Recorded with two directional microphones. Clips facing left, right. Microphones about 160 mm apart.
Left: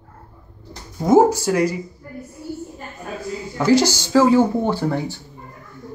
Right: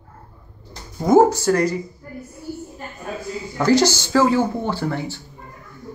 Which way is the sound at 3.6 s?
10° left (ahead or behind).